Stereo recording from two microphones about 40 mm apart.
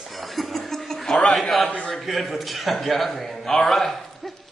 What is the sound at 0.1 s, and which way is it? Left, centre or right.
Chuckle, centre.